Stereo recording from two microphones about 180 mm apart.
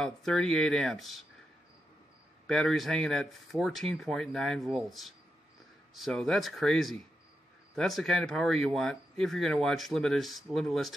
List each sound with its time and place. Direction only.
0.0 s speech: 5° left (ahead or behind)
2.4 s speech: 5° left (ahead or behind)